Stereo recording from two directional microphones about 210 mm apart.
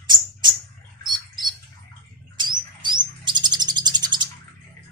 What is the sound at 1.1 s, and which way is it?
Rodents, 20° right (ahead or behind).